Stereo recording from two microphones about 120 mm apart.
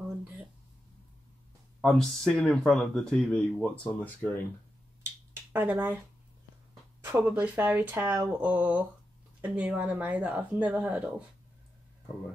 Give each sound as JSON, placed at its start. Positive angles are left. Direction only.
{"t": 1.8, "sound": "speech", "side_deg": 5}
{"t": 5.3, "sound": "a sound", "side_deg": -20}
{"t": 7.0, "sound": "speech", "side_deg": -20}